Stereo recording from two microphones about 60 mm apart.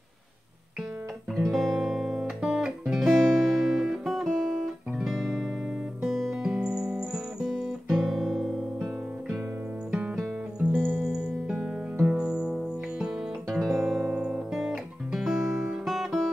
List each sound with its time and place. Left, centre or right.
1.3 s guitar: centre
6.0 s music: centre
10.6 s music: right
11.1 s music: centre
13.6 s guitar: centre